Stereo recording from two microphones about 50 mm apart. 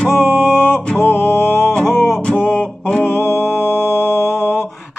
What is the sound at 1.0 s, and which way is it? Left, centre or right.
Mantra, left.